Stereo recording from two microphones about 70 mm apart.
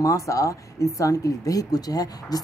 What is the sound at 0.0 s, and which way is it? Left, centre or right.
Speech, left.